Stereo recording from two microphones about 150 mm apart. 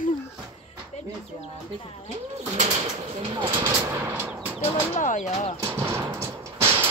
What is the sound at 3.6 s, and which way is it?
Machine gun, 20° right (ahead or behind).